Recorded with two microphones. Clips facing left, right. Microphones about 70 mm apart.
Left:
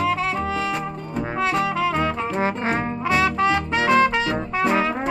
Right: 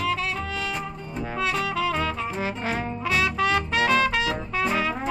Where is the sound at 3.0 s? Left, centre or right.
Left.